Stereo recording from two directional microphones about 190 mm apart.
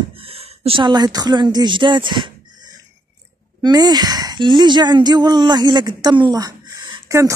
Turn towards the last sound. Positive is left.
turn(degrees=-20)  # may be behind; listen again after turning